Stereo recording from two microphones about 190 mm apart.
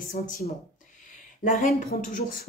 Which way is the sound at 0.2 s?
40° left (ahead or behind).